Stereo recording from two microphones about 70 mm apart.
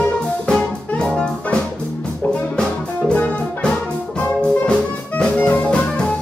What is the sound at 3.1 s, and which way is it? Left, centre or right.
Music, centre.